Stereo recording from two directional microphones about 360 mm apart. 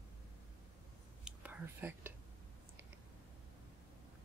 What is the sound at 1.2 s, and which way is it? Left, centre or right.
Whispering, centre.